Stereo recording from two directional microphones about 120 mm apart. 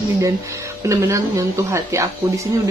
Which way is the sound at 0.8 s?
25° right (ahead or behind).